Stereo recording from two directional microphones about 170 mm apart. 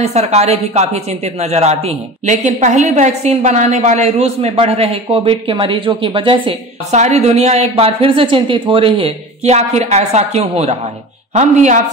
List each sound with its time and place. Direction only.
0.0 s speech: 40° right (ahead or behind)